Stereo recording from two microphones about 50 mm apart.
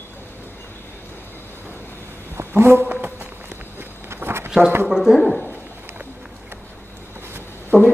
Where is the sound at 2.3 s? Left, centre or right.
Right.